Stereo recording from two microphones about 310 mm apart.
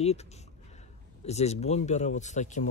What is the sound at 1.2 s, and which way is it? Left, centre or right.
Speech, left.